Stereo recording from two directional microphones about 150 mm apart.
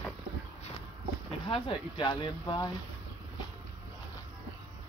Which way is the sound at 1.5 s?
35° left (ahead or behind).